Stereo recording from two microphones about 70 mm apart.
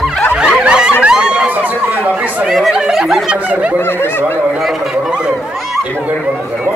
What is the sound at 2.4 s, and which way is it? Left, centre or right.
Speech, centre.